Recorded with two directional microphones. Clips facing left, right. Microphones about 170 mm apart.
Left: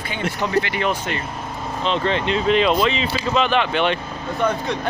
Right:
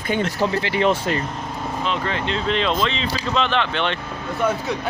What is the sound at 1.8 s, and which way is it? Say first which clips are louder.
Speech: left 5 dB; 25° left (ahead or behind).